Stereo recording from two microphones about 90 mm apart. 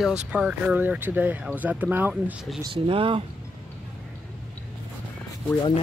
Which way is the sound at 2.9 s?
90° right.